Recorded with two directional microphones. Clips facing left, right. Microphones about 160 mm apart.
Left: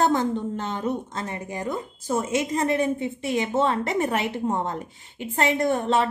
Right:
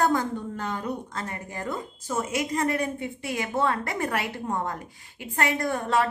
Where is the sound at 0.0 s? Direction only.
25° left (ahead or behind).